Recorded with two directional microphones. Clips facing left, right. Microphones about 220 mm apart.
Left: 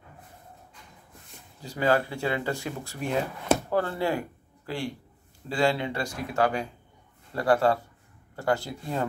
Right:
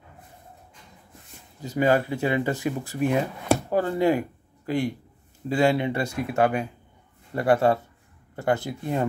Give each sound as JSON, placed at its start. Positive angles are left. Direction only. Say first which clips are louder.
{"t": 1.6, "sound": "speech", "louder": "right 3 dB", "side_deg": -20}